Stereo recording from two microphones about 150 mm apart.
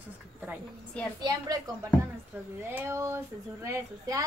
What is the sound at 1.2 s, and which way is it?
Speech, 25° right (ahead or behind).